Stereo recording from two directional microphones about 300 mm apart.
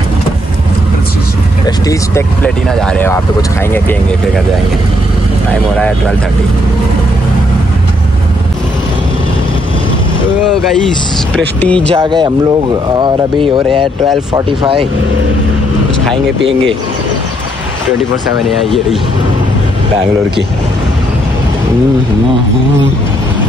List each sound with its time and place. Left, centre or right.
1.9 s speech: centre
11.6 s speech: centre
11.9 s speech: centre
14.3 s speech: centre